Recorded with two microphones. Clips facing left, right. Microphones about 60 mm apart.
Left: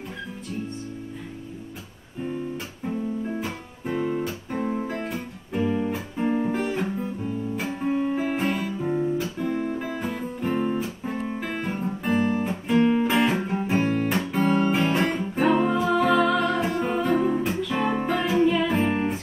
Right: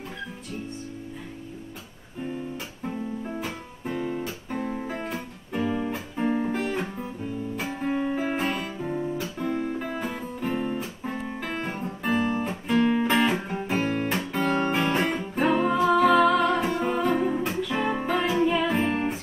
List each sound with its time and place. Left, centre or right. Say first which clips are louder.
3.3 s guitar: left 2 dB; centre
4.6 s music: left 3 dB; centre
7.9 s music: left 2 dB; centre
8.8 s guitar: left 5 dB; centre
12.2 s guitar: left 3 dB; centre
12.4 s music: left 2 dB; centre
14.0 s guitar: left 3 dB; centre
14.7 s music: left 2 dB; centre